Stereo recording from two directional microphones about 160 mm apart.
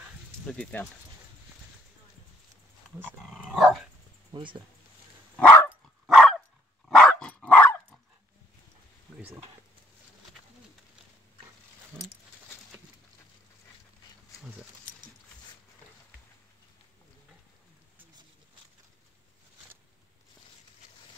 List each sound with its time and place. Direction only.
0.5 s speech: 5° left (ahead or behind)
3.3 s dog: centre (ahead or behind)
4.3 s speech: 30° right (ahead or behind)
5.3 s dog: 10° left (ahead or behind)
5.7 s dog: centre (ahead or behind)